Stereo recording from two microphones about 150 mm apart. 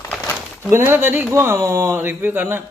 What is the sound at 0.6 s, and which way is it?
Speech, 15° right (ahead or behind).